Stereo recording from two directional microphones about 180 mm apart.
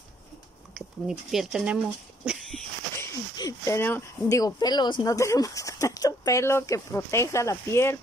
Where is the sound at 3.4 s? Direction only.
20° left (ahead or behind).